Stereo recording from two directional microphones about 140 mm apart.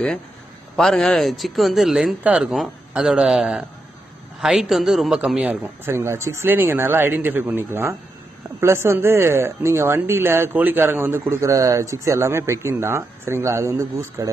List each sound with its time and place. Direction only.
0.7 s a man's voice: 5° left (ahead or behind); by 14.3 s 20° right (ahead or behind)